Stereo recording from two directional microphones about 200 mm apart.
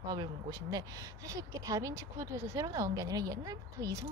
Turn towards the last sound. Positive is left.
turn(degrees=-15)  # may be behind; listen again after turning